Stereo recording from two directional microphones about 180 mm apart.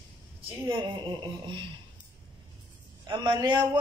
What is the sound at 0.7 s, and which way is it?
Speech, 25° right (ahead or behind).